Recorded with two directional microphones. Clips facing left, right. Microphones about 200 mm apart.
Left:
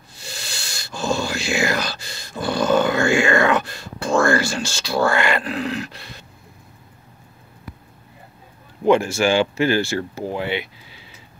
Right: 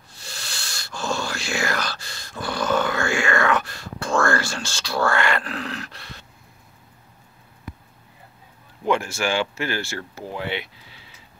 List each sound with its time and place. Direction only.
0.2 s a sound: 20° left (ahead or behind)
4.5 s speech: 10° left (ahead or behind)
8.8 s speech: 25° left (ahead or behind)